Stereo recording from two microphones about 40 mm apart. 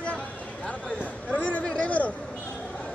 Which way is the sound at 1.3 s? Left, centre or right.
Left.